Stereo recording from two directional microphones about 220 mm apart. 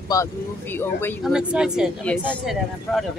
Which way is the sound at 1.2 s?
5° right (ahead or behind).